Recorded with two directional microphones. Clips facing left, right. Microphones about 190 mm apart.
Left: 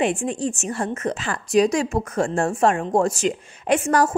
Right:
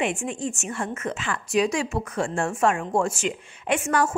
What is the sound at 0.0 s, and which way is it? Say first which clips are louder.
A woman's voice: left 4 dB; 35° left (ahead or behind).